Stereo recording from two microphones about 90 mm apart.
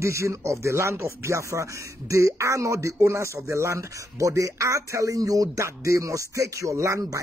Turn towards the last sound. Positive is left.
turn(degrees=-35)  # may be behind; listen again after turning